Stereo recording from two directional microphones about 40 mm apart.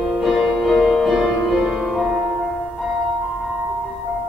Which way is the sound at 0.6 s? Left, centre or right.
Centre.